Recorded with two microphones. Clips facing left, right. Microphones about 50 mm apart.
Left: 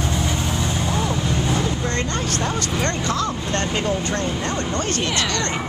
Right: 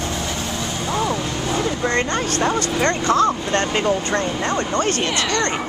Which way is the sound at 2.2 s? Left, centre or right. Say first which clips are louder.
Right 4 dB; right.